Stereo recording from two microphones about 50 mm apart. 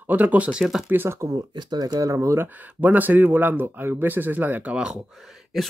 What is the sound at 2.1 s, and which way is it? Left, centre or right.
Speech, right.